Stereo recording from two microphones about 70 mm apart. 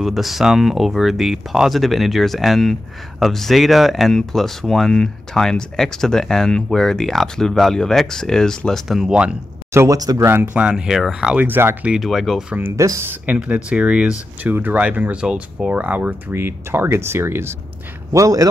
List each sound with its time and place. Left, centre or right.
0.0 s speech: centre
8.9 s speech: centre
9.8 s a man's voice: right
10.1 s speech: right
10.5 s speech: centre
11.3 s speech: right
12.0 s speech: centre
12.7 s speech: right
13.0 s speech: right
13.7 s speech: centre
14.4 s speech: right
18.1 s a man's voice: right